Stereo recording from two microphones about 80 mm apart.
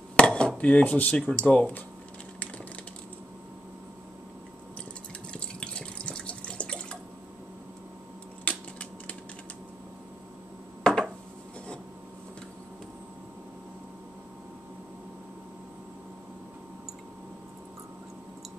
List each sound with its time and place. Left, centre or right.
0.1 s dishes: centre
0.6 s speech: centre
5.3 s water: centre
8.5 s typing: centre
10.8 s a sound: centre